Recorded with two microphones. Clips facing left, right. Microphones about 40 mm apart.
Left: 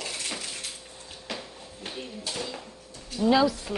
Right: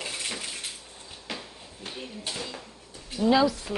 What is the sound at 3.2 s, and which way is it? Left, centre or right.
Speech, centre.